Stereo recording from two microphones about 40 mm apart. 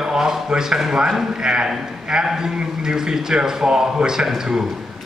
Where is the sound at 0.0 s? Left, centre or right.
Centre.